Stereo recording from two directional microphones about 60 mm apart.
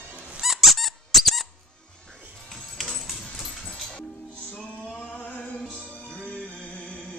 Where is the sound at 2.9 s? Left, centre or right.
Centre.